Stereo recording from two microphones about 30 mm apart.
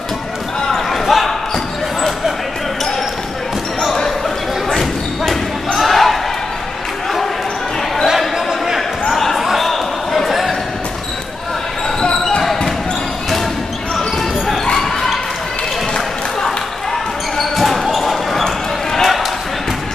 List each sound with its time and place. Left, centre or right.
0.7 s basketball bounce: centre
4.6 s basketball bounce: centre
5.8 s a sound: centre
9.1 s basketball bounce: centre
9.4 s a sound: centre
12.0 s basketball bounce: left
13.9 s basketball bounce: centre
14.7 s basketball bounce: centre
17.4 s basketball bounce: centre
18.4 s basketball bounce: centre